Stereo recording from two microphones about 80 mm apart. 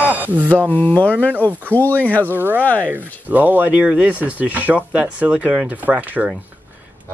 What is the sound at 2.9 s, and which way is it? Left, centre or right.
Speech, right.